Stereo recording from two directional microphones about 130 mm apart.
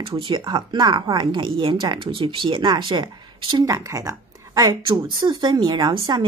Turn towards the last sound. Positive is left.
turn(degrees=-35)  # may be behind; listen again after turning